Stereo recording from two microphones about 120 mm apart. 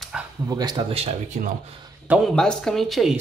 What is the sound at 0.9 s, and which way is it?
Speech, 60° right (ahead or behind).